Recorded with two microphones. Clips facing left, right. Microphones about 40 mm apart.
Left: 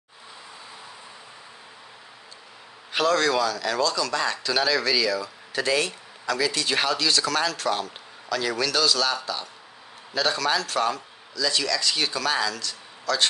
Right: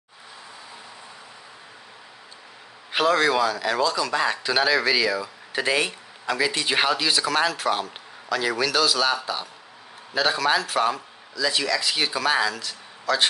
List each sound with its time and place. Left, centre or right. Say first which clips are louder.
2.9 s speech: right 2 dB; centre